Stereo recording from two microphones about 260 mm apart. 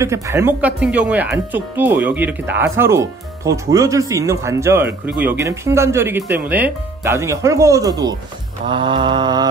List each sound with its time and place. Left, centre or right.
0.0 s speech: centre